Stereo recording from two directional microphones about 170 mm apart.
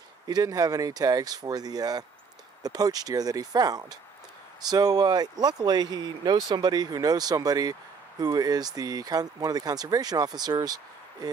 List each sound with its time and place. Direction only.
0.3 s speech: 20° right (ahead or behind)